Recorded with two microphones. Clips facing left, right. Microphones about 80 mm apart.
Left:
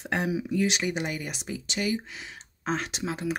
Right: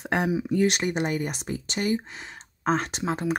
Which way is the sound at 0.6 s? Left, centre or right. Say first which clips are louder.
Right 4 dB; right.